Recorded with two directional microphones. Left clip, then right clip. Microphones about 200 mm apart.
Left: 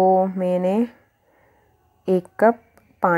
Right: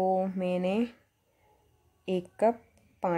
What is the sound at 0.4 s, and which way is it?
Speech, 15° left (ahead or behind).